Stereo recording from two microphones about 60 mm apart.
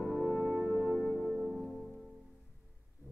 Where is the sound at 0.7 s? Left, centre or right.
Centre.